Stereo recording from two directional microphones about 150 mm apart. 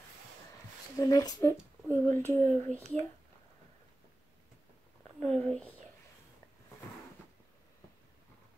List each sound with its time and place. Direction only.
0.9 s speech: 25° left (ahead or behind)
1.9 s speech: 15° left (ahead or behind)
5.2 s speech: 5° left (ahead or behind)